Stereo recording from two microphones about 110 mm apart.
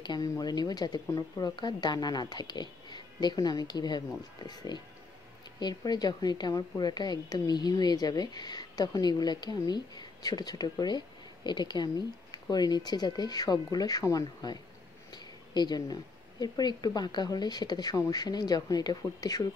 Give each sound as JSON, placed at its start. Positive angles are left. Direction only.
{"t": 0.0, "sound": "a woman's voice", "side_deg": 40}